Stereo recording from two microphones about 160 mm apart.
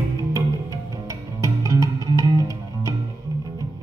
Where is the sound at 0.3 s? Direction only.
20° right (ahead or behind).